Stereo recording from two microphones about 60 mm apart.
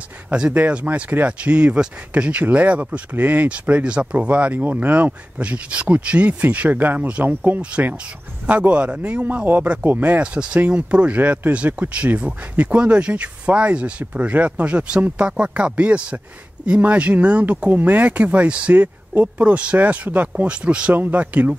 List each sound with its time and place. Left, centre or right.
0.3 s speech: centre
10.2 s speech: centre
20.9 s speech: right